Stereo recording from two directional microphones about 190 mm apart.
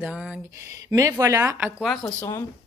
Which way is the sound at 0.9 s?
20° right (ahead or behind).